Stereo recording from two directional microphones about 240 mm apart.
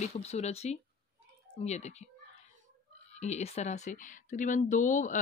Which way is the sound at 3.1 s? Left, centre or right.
Left.